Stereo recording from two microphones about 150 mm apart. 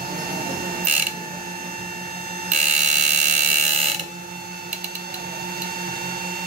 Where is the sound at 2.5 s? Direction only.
55° right (ahead or behind).